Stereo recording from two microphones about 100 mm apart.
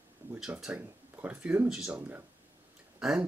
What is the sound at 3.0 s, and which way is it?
Speech, 5° right (ahead or behind).